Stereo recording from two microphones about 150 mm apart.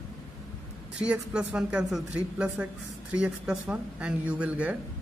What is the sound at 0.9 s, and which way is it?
Speech, 5° right (ahead or behind).